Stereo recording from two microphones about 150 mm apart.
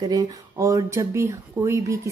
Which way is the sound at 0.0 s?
25° right (ahead or behind).